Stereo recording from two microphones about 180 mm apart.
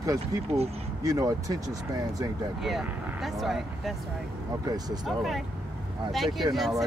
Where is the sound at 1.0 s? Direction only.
20° right (ahead or behind).